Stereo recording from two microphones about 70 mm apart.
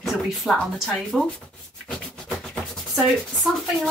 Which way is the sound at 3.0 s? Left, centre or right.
Centre.